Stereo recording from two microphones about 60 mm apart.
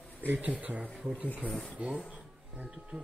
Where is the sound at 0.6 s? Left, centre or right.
Centre.